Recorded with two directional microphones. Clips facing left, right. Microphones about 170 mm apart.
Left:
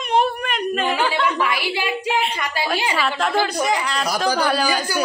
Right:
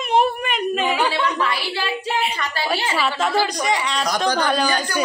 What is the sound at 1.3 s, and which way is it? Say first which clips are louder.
Speech: left 1 dB; 15° left (ahead or behind).